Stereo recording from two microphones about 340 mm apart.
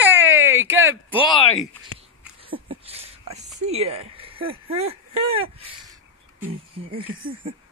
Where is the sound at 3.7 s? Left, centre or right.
Centre.